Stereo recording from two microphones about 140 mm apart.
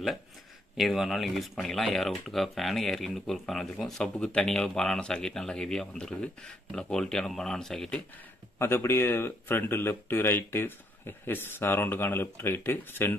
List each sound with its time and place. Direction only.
0.7 s speech: centre (ahead or behind)
8.5 s speech: 15° left (ahead or behind)